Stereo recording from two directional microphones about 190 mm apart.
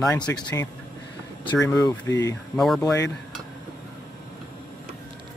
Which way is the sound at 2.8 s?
15° left (ahead or behind).